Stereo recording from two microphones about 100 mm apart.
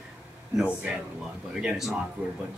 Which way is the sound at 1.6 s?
5° right (ahead or behind).